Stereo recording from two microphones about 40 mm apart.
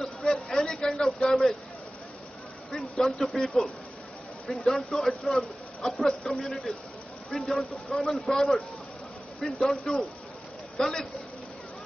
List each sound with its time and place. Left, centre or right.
0.0 s a sound: centre
2.7 s speech: centre
9.6 s speech: centre